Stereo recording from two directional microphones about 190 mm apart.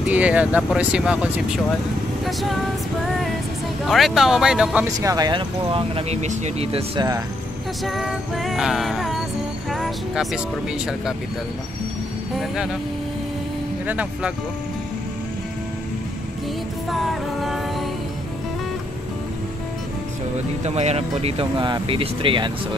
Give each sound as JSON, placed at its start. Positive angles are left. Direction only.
{"t": 0.0, "sound": "speech", "side_deg": -5}
{"t": 3.8, "sound": "music", "side_deg": 0}
{"t": 4.9, "sound": "speech", "side_deg": -20}
{"t": 7.8, "sound": "music", "side_deg": 0}
{"t": 9.7, "sound": "speech", "side_deg": 0}
{"t": 13.8, "sound": "speech", "side_deg": -5}
{"t": 16.9, "sound": "music", "side_deg": 0}
{"t": 20.6, "sound": "speech", "side_deg": -35}